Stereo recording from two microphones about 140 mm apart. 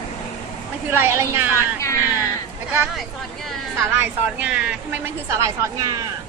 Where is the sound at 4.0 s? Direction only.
10° right (ahead or behind).